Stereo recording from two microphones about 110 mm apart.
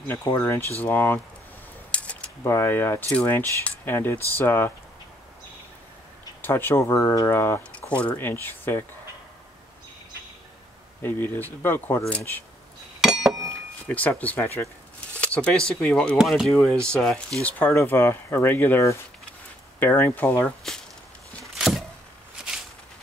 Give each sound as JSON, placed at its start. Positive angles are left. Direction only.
{"t": 0.0, "sound": "speech", "side_deg": 20}
{"t": 1.9, "sound": "a sound", "side_deg": 10}
{"t": 2.4, "sound": "speech", "side_deg": 25}
{"t": 6.4, "sound": "speech", "side_deg": 20}
{"t": 7.9, "sound": "speech", "side_deg": 10}
{"t": 11.0, "sound": "speech", "side_deg": 20}
{"t": 13.0, "sound": "chink", "side_deg": -5}
{"t": 13.8, "sound": "speech", "side_deg": 15}
{"t": 16.2, "sound": "speech", "side_deg": -5}
{"t": 21.5, "sound": "a sound", "side_deg": 0}